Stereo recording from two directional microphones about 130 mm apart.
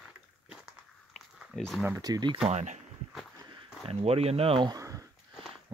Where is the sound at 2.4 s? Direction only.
65° right (ahead or behind).